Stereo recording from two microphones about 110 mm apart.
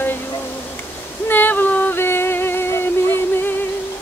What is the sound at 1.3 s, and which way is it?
Music, 20° left (ahead or behind).